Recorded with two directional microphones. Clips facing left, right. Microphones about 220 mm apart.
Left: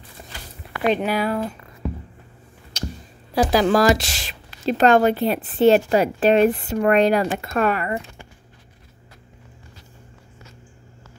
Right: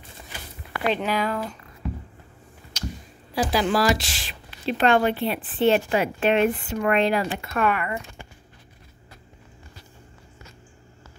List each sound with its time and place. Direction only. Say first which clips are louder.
0.9 s speech: left 3 dB; 10° left (ahead or behind)
3.3 s a woman's voice: left 5 dB; 45° left (ahead or behind)